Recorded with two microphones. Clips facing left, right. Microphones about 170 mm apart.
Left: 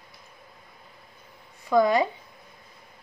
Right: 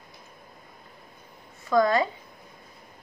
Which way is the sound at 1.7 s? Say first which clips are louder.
Left 1 dB; 15° left (ahead or behind).